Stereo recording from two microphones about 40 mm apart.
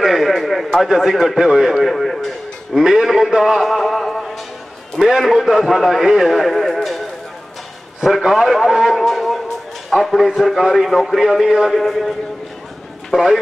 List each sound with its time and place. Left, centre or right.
0.0 s a sound: centre
0.8 s a man's voice: centre
1.8 s radio: centre
2.8 s a man's voice: centre
6.5 s music: centre
8.0 s a man's voice: centre
8.9 s a man's voice: centre
11.2 s a man's voice: centre
11.7 s a man's voice: centre
13.1 s speech: right